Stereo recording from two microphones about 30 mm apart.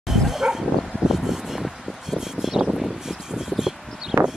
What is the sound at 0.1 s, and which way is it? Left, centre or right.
Bow-wow, centre.